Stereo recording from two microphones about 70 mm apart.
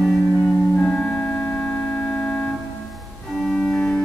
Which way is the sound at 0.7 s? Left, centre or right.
Centre.